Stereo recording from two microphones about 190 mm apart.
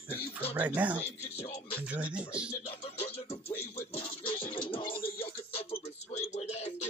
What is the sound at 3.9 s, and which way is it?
Music, 25° left (ahead or behind).